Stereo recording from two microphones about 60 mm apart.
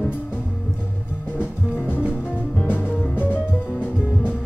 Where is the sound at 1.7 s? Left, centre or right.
Left.